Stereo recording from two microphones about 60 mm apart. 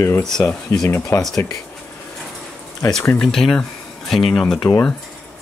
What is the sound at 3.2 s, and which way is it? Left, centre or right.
Speech, centre.